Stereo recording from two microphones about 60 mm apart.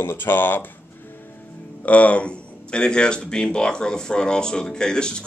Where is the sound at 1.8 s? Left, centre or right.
Left.